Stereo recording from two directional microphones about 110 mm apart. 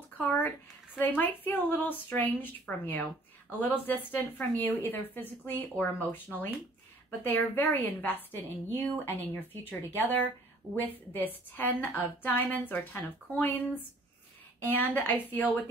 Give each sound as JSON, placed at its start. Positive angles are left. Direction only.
{"t": 0.9, "sound": "speech", "side_deg": 15}